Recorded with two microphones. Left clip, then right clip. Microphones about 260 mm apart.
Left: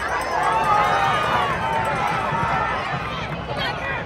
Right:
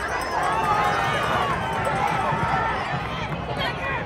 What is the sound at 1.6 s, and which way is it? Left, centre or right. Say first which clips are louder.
Run: left 2 dB; right.